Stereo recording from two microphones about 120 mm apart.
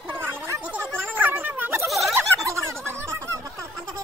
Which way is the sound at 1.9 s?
Centre (ahead or behind).